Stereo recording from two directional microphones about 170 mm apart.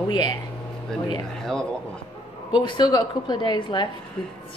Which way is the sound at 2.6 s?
25° left (ahead or behind).